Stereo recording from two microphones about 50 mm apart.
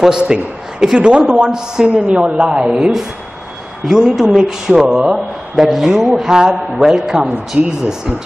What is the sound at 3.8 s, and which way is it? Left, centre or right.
Speech, centre.